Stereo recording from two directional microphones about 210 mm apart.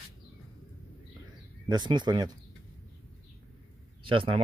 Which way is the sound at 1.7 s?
20° right (ahead or behind).